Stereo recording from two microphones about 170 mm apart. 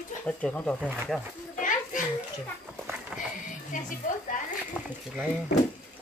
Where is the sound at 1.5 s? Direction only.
50° left (ahead or behind).